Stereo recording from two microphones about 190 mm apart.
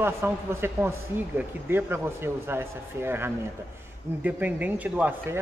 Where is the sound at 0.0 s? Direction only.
15° right (ahead or behind).